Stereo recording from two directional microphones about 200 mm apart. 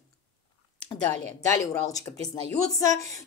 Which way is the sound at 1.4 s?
15° left (ahead or behind).